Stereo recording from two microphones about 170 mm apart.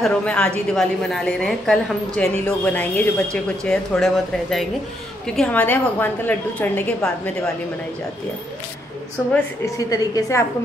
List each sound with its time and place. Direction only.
0.0 s a woman's voice: 5° left (ahead or behind)
9.8 s a woman's voice: 20° left (ahead or behind)